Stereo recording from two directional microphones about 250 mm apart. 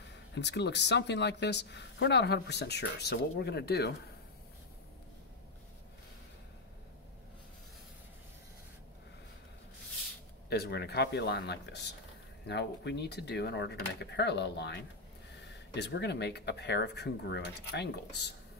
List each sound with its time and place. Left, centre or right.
0.0 s speech: left
10.5 s speech: left